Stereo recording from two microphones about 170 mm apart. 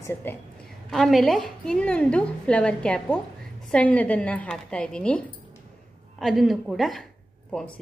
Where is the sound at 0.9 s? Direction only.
Centre (ahead or behind).